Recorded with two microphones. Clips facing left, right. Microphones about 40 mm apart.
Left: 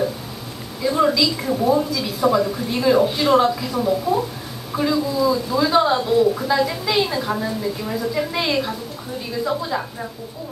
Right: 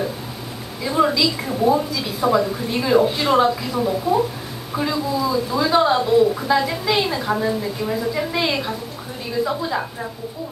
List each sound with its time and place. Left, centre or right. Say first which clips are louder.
0.8 s a woman's voice: even; centre